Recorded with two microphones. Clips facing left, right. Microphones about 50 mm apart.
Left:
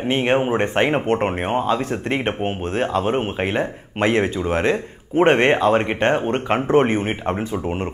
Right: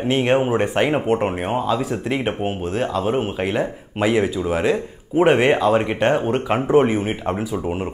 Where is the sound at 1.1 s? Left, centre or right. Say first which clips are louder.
Even; centre.